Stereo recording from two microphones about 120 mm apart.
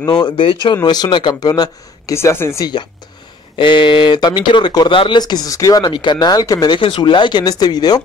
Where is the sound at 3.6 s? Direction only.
45° left (ahead or behind).